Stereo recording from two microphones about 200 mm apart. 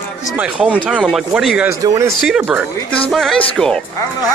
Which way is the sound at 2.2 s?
Centre (ahead or behind).